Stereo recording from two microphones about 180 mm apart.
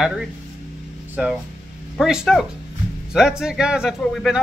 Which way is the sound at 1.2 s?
5° right (ahead or behind).